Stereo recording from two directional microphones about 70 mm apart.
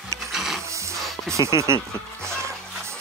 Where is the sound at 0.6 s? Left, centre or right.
Right.